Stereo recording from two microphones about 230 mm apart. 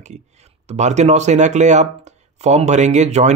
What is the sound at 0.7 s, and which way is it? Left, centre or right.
Speech, right.